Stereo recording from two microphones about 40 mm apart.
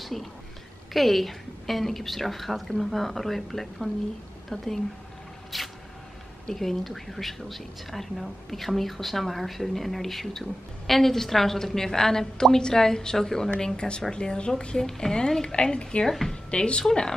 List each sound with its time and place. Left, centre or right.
0.0 s a woman's voice: centre
5.5 s a sound: centre
6.5 s a woman's voice: centre; by 16.1 s left
16.1 s a woman's voice: centre
16.4 s a woman's voice: left